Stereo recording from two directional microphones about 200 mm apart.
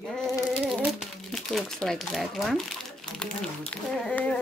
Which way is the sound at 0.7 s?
Centre (ahead or behind).